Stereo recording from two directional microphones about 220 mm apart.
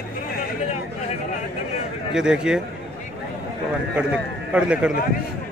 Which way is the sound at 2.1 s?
5° right (ahead or behind).